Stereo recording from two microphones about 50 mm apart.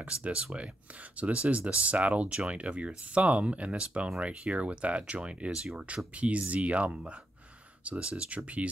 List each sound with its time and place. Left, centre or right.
0.0 s speech: right
5.5 s speech: centre
6.1 s speech: right